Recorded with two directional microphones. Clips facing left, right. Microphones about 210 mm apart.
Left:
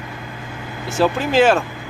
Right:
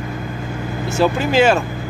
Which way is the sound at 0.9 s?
Centre (ahead or behind).